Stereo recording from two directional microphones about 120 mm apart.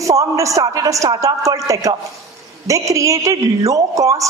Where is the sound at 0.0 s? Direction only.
25° right (ahead or behind).